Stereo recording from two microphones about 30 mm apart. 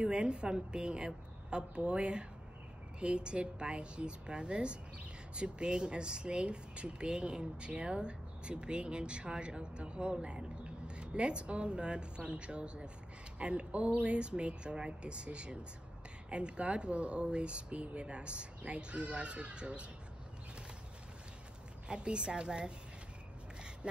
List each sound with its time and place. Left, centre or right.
0.0 s speech: right
14.1 s speech: right
21.8 s speech: right